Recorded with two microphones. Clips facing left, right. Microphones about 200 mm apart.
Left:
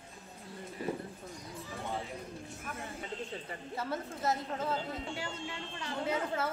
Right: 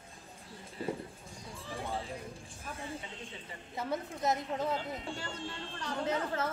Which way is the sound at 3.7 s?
15° right (ahead or behind).